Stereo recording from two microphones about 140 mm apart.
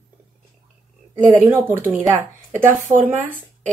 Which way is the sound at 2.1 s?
60° right (ahead or behind).